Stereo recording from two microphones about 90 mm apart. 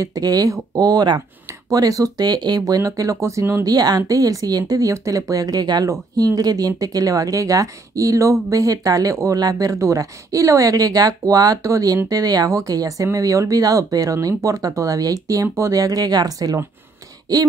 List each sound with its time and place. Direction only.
0.0 s speech: 45° right (ahead or behind)
1.7 s speech: 45° right (ahead or behind)
3.6 s speech: 45° right (ahead or behind)